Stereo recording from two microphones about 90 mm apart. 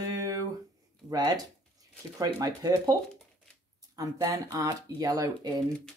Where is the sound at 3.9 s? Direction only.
40° right (ahead or behind).